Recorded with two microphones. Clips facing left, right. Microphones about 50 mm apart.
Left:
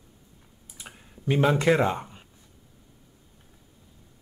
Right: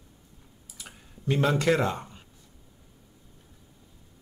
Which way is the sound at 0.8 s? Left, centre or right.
Centre.